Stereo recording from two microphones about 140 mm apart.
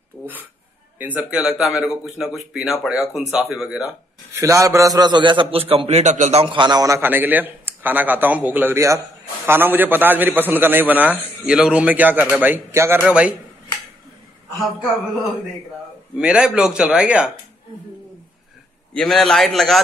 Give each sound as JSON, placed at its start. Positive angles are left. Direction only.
{"t": 0.9, "sound": "speech", "side_deg": -10}
{"t": 4.4, "sound": "a man's voice", "side_deg": -20}
{"t": 6.4, "sound": "a man's voice", "side_deg": -35}
{"t": 7.0, "sound": "a man's voice", "side_deg": -15}
{"t": 16.2, "sound": "a man's voice", "side_deg": -5}
{"t": 18.9, "sound": "speech", "side_deg": 5}